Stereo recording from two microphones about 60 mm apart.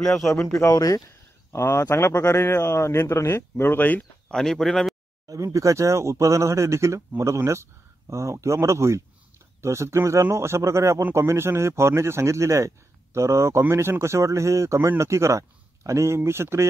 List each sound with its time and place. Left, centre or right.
0.5 s speech: left
1.0 s a sound: left
2.0 s a man's voice: left
4.3 s speech: centre
5.3 s a man's voice: right